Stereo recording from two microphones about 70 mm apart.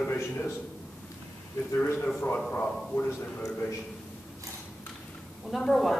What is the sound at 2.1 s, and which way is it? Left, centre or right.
Speech, left.